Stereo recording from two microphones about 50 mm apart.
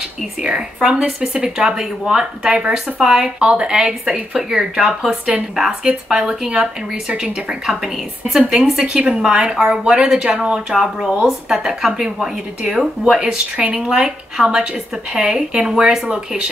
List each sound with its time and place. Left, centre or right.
0.4 s speech: centre
8.4 s speech: centre